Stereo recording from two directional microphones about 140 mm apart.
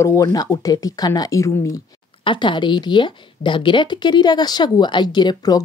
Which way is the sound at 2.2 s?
35° left (ahead or behind).